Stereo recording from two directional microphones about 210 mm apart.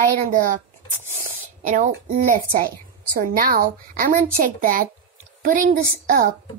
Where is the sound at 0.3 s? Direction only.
40° right (ahead or behind).